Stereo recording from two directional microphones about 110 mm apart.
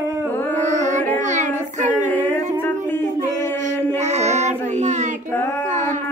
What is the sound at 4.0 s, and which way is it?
Child singing, 90° right.